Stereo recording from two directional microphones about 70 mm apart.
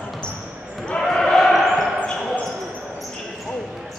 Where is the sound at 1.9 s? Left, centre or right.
Centre.